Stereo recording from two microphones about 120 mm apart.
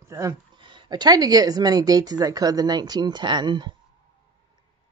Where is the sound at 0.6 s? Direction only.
40° right (ahead or behind).